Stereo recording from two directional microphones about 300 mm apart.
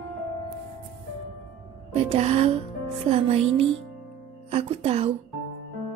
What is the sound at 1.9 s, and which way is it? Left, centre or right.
Speech, right.